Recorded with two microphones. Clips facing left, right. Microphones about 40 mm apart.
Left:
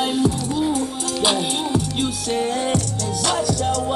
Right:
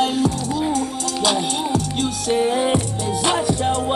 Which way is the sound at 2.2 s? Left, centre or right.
Centre.